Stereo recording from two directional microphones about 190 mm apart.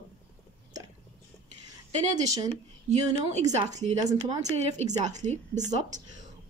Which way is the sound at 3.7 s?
35° right (ahead or behind).